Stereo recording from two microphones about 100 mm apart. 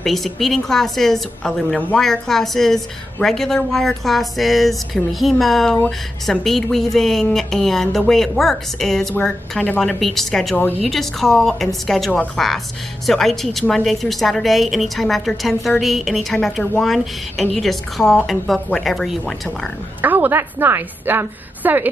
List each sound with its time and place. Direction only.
0.0 s a woman's voice: centre (ahead or behind)
20.0 s a woman's voice: 20° right (ahead or behind)